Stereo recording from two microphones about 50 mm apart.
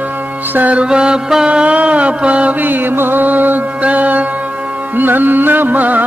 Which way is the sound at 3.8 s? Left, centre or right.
Right.